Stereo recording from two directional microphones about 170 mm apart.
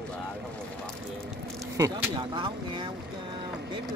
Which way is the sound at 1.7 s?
20° right (ahead or behind).